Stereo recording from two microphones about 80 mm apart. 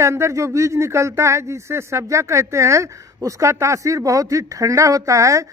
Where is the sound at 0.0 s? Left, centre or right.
Right.